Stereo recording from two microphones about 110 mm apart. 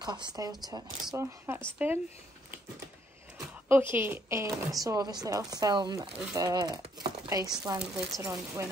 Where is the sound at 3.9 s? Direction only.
20° right (ahead or behind); by 6.8 s 40° right (ahead or behind).